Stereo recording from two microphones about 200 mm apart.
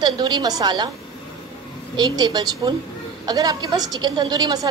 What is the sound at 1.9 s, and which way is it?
A woman's voice, 20° right (ahead or behind).